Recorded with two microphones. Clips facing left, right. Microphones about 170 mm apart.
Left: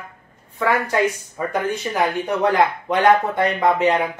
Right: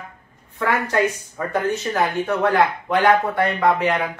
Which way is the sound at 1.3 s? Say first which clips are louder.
Even; 15° left (ahead or behind).